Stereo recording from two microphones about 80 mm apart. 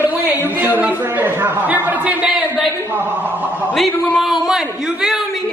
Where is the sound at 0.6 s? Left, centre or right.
Right.